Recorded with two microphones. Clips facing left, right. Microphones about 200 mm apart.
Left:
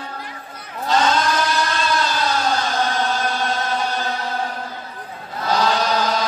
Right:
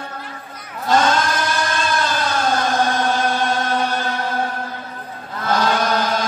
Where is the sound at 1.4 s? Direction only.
50° right (ahead or behind).